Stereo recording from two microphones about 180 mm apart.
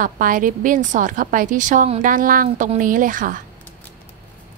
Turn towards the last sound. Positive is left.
turn(degrees=-50)  # may be behind; listen again after turning